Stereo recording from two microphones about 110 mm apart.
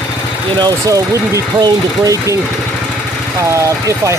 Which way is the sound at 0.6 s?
35° right (ahead or behind).